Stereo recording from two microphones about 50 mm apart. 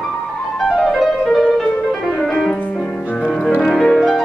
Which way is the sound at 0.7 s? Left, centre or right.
Centre.